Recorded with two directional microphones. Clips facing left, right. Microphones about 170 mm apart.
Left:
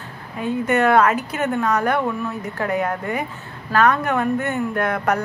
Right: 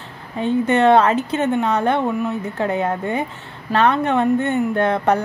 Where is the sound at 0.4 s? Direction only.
25° right (ahead or behind).